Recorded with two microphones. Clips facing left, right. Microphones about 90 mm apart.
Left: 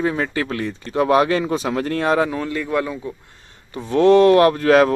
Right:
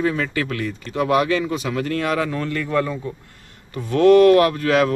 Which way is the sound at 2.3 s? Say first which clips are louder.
Left 1 dB; 15° left (ahead or behind).